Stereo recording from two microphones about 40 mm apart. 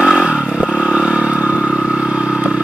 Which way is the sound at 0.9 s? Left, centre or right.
Right.